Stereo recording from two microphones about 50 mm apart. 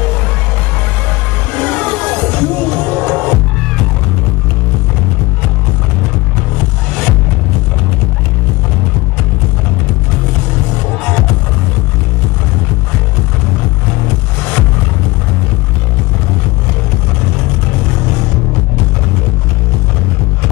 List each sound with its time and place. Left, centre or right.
1.5 s music: left